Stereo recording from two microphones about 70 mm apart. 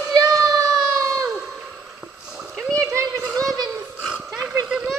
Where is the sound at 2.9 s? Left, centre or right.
Right.